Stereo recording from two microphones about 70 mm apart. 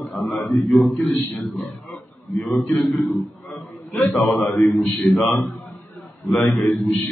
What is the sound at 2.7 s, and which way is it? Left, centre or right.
Speech, centre.